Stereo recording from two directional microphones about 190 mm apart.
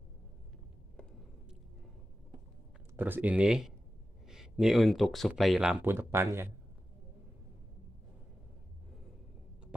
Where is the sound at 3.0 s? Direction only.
10° right (ahead or behind).